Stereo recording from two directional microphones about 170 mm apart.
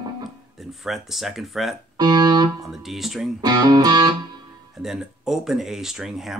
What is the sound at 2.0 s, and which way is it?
Speech, 25° right (ahead or behind).